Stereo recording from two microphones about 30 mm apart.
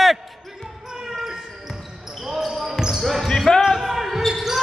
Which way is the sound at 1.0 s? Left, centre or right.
Centre.